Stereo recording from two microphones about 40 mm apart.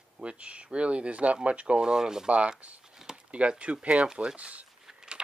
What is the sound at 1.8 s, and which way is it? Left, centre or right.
Speech, centre.